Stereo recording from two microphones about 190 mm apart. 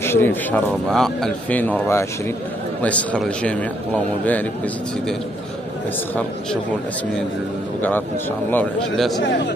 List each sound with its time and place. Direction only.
0.0 s speech: 10° left (ahead or behind)
8.5 s a man's voice: 5° left (ahead or behind)
9.2 s a man's voice: 65° left (ahead or behind)